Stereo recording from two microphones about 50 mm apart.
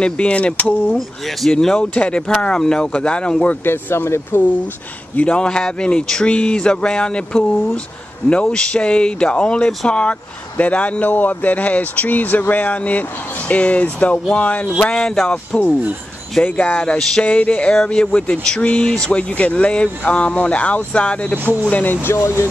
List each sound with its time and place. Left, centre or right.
0.0 s speech: left
0.9 s speech: centre
1.5 s music: centre
1.8 s speech: left
2.4 s music: centre
2.9 s speech: left
3.6 s speech: left
5.1 s speech: left
14.8 s music: centre
16.4 s speech: left
22.0 s speech: left